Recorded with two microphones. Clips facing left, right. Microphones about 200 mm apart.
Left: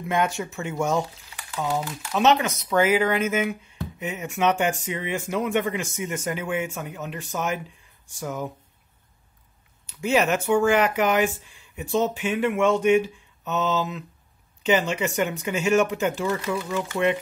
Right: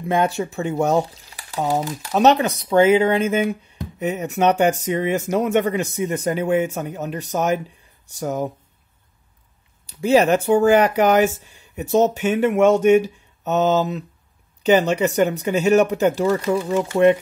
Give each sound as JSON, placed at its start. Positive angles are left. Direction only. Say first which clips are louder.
{"t": 0.0, "sound": "speech", "louder": "right 5 dB", "side_deg": -30}
{"t": 9.8, "sound": "speech", "louder": "right 6 dB", "side_deg": -35}